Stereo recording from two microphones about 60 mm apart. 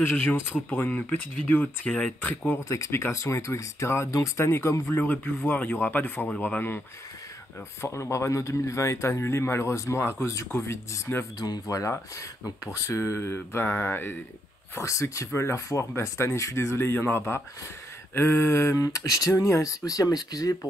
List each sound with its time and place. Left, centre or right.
0.0 s speech: left
1.9 s speech: centre
2.2 s speech: left
2.9 s speech: left
4.9 s speech: left
7.8 s speech: left
10.7 s speech: left
11.3 s speech: left
12.2 s speech: left
14.8 s speech: left
16.9 s speech: left
18.8 s speech: left
19.3 s speech: left